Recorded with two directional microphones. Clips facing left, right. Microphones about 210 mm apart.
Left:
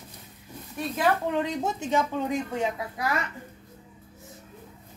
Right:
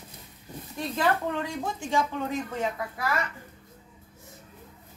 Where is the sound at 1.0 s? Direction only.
15° left (ahead or behind).